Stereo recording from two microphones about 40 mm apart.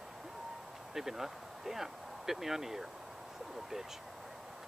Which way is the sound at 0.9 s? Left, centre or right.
Centre.